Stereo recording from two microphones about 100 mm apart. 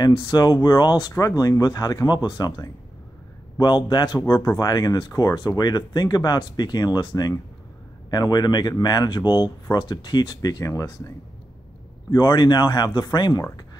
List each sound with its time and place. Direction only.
0.0 s speech: 45° left (ahead or behind)
1.1 s speech: 35° left (ahead or behind)
12.1 s speech: 45° left (ahead or behind)